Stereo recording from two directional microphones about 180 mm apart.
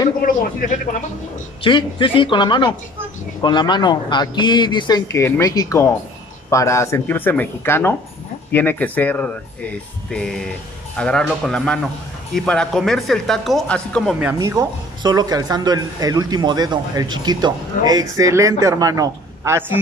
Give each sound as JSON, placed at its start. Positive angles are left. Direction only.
{"t": 0.2, "sound": "a sound", "side_deg": 50}
{"t": 1.6, "sound": "a man's voice", "side_deg": 25}
{"t": 14.2, "sound": "speech", "side_deg": -15}